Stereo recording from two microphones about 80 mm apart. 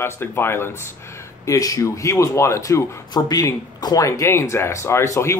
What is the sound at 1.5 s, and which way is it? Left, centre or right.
Speech, left.